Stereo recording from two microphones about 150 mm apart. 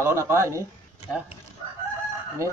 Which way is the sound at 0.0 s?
15° right (ahead or behind).